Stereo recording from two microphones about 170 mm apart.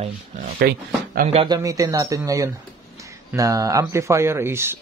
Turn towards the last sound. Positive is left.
turn(degrees=-15)  # may be behind; listen again after turning